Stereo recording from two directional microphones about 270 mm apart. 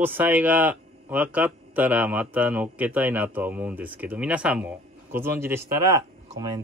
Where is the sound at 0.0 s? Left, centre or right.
Centre.